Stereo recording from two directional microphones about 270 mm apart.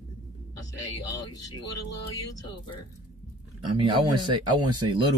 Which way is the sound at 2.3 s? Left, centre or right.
Centre.